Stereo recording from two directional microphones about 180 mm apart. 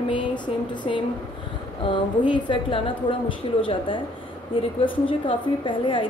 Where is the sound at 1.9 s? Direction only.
25° left (ahead or behind).